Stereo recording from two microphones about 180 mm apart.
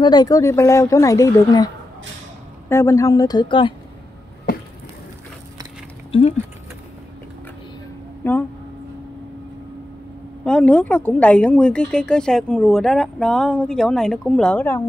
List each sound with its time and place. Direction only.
0.0 s speech: 20° left (ahead or behind)
2.7 s speech: 15° left (ahead or behind)
6.1 s speech: 30° left (ahead or behind)
8.2 s speech: 10° left (ahead or behind)
10.4 s speech: 5° left (ahead or behind)